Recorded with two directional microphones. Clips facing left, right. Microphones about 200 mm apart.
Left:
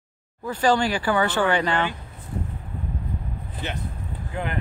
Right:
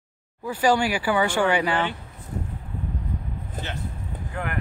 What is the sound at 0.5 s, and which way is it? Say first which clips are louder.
Speech: even; 10° right (ahead or behind).